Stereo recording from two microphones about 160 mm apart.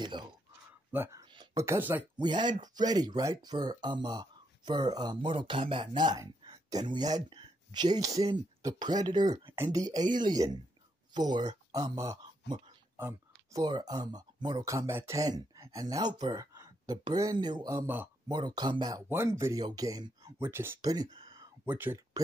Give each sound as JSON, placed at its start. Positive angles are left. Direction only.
{"t": 0.0, "sound": "a sound", "side_deg": -30}
{"t": 0.9, "sound": "speech", "side_deg": -15}
{"t": 2.1, "sound": "speech", "side_deg": -30}
{"t": 12.9, "sound": "a sound", "side_deg": -15}
{"t": 13.6, "sound": "speech", "side_deg": -25}
{"t": 21.6, "sound": "speech", "side_deg": -10}